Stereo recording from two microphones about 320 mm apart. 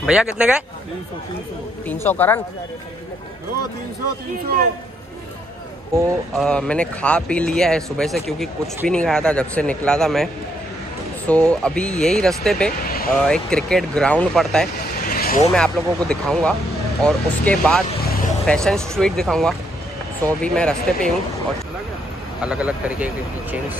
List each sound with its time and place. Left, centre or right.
0.0 s speech: centre
1.9 s speech: centre
5.9 s speech: centre
15.0 s vehicle: left
15.5 s speech: centre
22.4 s speech: centre